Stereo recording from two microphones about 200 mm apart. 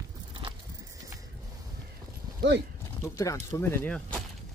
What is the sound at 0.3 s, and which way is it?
Biting, 25° right (ahead or behind).